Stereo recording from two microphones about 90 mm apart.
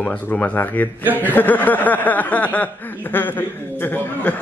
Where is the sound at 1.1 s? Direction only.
20° left (ahead or behind).